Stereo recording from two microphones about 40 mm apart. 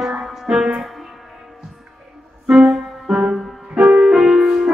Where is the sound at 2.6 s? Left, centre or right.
Centre.